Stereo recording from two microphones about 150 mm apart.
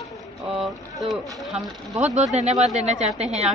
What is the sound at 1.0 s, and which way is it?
Speech, centre (ahead or behind).